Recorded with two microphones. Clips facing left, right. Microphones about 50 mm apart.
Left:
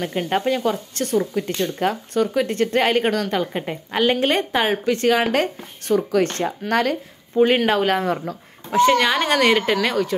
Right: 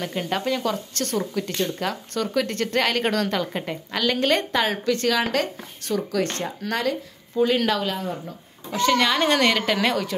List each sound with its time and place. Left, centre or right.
0.0 s a woman's voice: centre; by 7.8 s left
7.8 s speech: left
8.6 s a child's voice: left
8.9 s speech: centre